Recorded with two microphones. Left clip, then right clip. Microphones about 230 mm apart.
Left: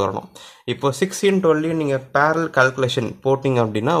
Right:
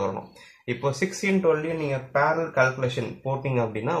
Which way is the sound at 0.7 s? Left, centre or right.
Left.